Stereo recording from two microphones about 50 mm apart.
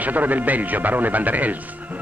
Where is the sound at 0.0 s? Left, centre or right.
Right.